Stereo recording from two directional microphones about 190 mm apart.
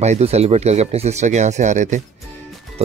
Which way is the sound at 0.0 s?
35° right (ahead or behind).